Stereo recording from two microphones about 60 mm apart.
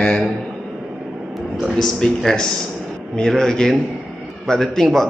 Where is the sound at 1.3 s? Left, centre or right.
Centre.